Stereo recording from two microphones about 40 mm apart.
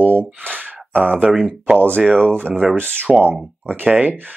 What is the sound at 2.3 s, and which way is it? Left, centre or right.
Speech, right.